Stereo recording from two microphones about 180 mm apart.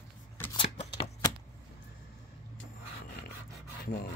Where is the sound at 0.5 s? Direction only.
30° left (ahead or behind).